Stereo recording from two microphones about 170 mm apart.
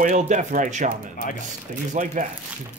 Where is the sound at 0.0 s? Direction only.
45° right (ahead or behind).